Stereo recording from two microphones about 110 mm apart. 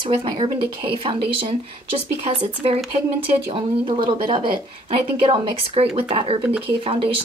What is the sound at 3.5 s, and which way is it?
Speech, 50° right (ahead or behind).